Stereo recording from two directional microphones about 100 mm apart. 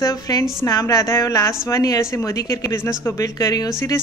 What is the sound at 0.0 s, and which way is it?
Speech, 40° left (ahead or behind).